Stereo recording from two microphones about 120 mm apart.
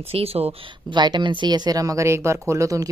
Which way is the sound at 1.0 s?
40° right (ahead or behind).